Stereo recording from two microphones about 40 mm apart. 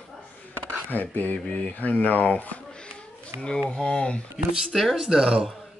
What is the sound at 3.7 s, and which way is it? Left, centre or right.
Speech, left.